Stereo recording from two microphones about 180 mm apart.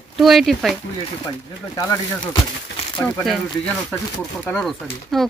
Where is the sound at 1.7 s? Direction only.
20° left (ahead or behind).